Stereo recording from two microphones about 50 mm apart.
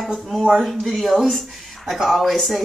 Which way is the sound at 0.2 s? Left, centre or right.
Centre.